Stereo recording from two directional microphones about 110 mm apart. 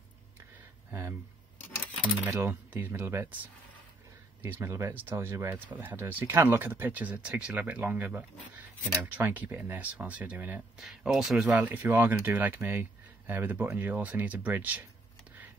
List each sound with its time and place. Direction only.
2.2 s speech: 15° right (ahead or behind)
10.8 s speech: 5° right (ahead or behind)